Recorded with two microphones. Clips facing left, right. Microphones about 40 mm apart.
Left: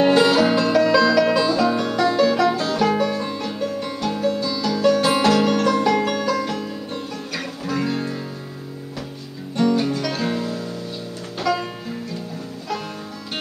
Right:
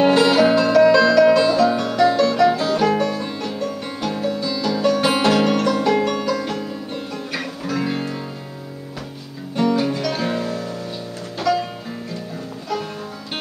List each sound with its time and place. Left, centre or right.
0.0 s music: centre
7.8 s music: centre
9.6 s music: centre
10.4 s music: right
11.5 s music: centre